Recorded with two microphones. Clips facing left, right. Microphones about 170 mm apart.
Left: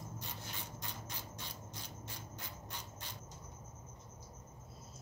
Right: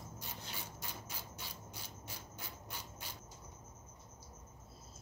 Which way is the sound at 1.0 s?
10° right (ahead or behind).